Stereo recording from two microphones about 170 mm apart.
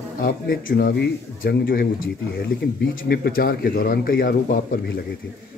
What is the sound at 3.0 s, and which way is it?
A man's voice, 60° left (ahead or behind).